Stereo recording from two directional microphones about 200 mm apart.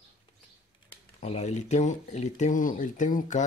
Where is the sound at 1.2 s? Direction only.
35° left (ahead or behind).